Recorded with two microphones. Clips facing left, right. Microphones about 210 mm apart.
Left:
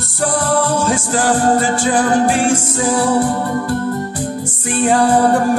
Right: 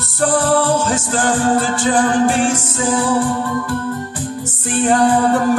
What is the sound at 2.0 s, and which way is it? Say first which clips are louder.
Music: even; 40° left (ahead or behind).